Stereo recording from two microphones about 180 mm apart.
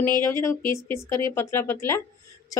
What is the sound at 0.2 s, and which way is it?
A woman's voice, 15° left (ahead or behind).